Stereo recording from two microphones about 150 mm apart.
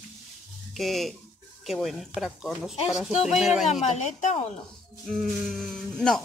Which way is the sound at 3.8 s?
50° left (ahead or behind).